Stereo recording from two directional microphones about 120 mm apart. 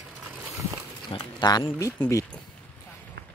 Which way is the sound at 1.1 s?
35° left (ahead or behind).